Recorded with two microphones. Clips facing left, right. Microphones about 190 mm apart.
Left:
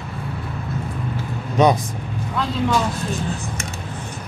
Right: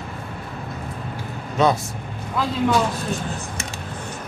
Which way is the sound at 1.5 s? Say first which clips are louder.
Left 3 dB; 20° left (ahead or behind).